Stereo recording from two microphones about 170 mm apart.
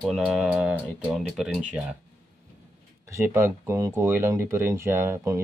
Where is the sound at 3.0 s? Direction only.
15° right (ahead or behind).